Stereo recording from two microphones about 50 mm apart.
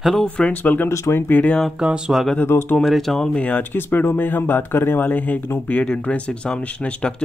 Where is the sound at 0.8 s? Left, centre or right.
Left.